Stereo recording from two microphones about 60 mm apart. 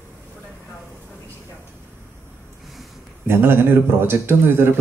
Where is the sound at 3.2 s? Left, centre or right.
Right.